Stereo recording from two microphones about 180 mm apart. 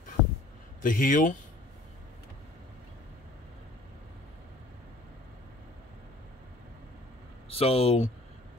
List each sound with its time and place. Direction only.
0.8 s speech: 50° left (ahead or behind)
7.4 s speech: 35° left (ahead or behind)